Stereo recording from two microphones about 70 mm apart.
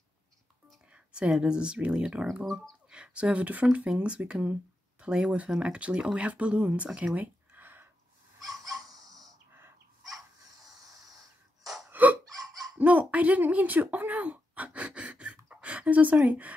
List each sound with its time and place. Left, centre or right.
0.9 s speech: centre
2.4 s speech: centre
2.9 s speech: centre
7.2 s a sound: right
8.6 s a sound: right
11.6 s hiccup: centre
11.9 s hiccup: right
12.7 s a sound: right
13.1 s speech: right